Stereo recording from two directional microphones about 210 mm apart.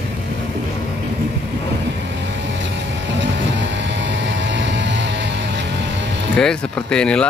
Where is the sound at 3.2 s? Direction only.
60° right (ahead or behind).